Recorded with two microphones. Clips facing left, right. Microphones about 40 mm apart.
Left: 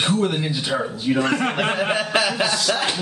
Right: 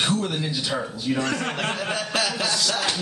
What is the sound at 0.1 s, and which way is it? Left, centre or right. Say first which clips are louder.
A man's voice: left 4 dB; centre.